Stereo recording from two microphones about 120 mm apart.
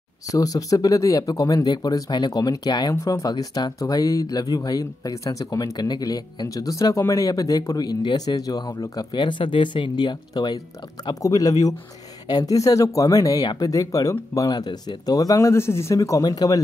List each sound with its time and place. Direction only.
0.3 s speech: 30° left (ahead or behind)